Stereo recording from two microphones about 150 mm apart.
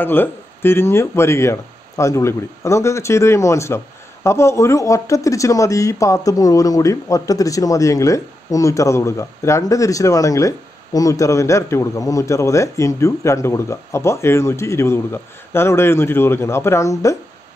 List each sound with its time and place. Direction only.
0.0 s speech: 15° left (ahead or behind)